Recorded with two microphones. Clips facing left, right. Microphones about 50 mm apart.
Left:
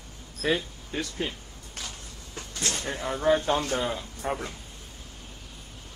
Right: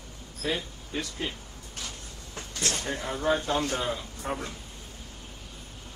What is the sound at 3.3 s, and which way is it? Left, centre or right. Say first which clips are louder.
Speech: left 3 dB; left.